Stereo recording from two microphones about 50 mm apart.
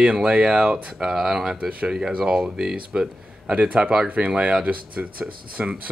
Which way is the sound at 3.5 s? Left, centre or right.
Right.